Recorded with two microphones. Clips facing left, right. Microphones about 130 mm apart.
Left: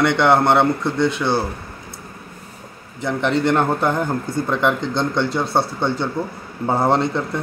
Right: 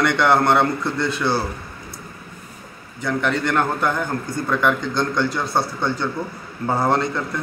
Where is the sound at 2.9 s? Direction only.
25° left (ahead or behind).